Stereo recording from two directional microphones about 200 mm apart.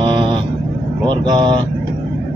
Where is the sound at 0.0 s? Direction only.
25° right (ahead or behind).